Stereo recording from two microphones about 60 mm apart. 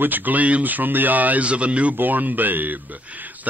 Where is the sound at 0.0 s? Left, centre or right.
Right.